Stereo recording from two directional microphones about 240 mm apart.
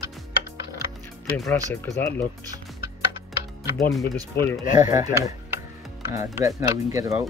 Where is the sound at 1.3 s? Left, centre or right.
Centre.